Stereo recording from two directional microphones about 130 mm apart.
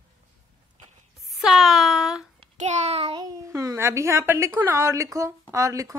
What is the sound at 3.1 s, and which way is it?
A woman's voice, 30° right (ahead or behind).